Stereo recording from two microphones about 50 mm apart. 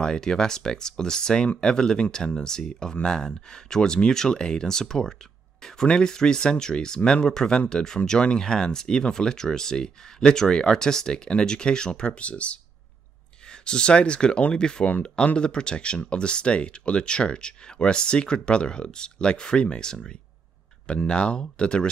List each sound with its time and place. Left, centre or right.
0.0 s speech: centre